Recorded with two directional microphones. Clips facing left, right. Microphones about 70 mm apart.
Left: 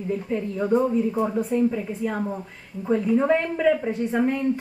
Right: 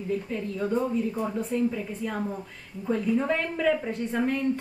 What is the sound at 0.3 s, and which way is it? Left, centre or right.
A woman's voice, centre.